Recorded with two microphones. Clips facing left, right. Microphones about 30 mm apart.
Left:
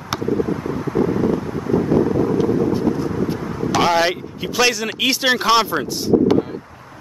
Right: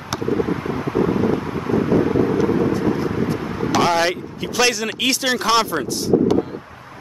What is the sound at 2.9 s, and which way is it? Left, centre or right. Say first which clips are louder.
Vehicle: even; right.